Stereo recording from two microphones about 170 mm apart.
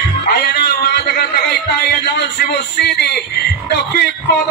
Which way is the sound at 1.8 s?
75° left (ahead or behind).